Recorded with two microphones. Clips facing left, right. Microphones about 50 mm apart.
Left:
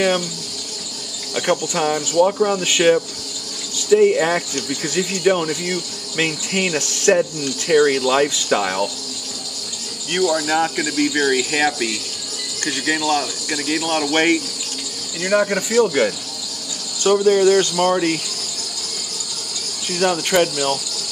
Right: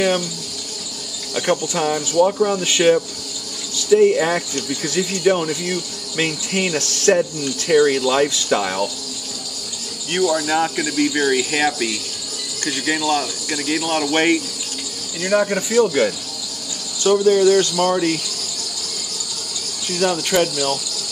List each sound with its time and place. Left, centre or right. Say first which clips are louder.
1.3 s speech: even; centre
10.1 s cricket: even; centre
12.6 s speech: even; centre
17.0 s speech: even; left
19.9 s speech: left 1 dB; left